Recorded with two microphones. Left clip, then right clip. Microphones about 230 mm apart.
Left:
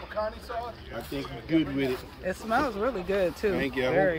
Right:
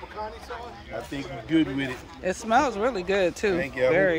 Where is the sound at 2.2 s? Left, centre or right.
Right.